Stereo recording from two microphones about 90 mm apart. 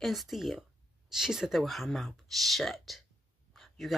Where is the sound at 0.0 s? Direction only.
Centre (ahead or behind).